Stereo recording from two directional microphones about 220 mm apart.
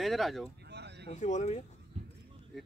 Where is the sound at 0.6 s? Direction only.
50° right (ahead or behind).